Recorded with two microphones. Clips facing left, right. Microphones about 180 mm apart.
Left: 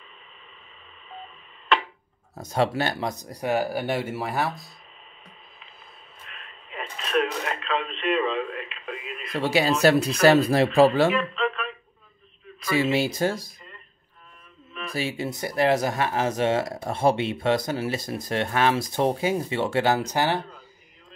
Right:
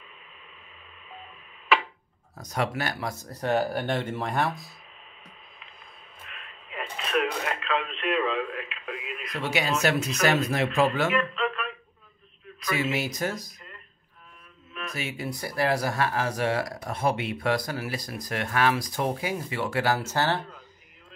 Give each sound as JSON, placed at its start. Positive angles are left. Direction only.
{"t": 1.1, "sound": "telephone dialing", "side_deg": -5}
{"t": 2.3, "sound": "speech", "side_deg": 25}
{"t": 6.2, "sound": "radio", "side_deg": 0}
{"t": 9.3, "sound": "speech", "side_deg": 35}
{"t": 11.1, "sound": "speech", "side_deg": 0}
{"t": 12.9, "sound": "speech", "side_deg": 30}
{"t": 15.0, "sound": "speech", "side_deg": 30}